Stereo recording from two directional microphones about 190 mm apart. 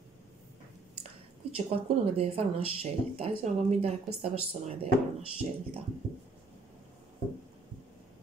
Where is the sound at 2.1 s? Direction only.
30° right (ahead or behind).